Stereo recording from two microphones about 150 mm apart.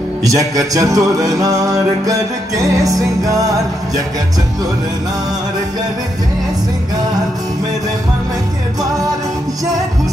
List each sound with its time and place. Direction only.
0.2 s music: 25° right (ahead or behind)